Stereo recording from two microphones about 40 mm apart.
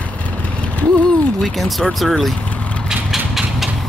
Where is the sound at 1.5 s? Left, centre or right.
Centre.